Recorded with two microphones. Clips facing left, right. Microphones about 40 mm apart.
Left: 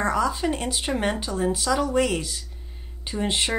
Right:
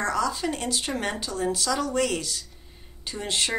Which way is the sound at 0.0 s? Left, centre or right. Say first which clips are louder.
Left 3 dB; centre.